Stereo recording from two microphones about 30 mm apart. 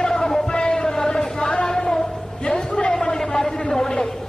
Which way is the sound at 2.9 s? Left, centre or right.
Centre.